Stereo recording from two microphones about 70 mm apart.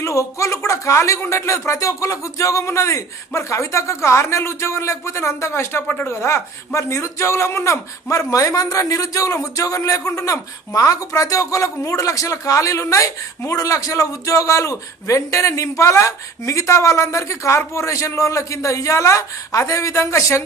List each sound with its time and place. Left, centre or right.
0.0 s speech: left